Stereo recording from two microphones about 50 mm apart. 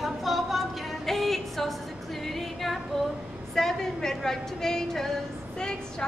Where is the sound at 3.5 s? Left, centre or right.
Centre.